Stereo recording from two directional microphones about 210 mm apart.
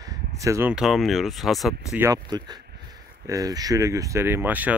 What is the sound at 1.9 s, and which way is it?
Speech, 15° right (ahead or behind).